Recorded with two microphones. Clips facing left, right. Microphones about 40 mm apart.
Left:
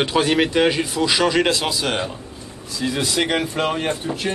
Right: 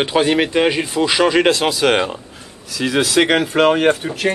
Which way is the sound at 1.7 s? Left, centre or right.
Right.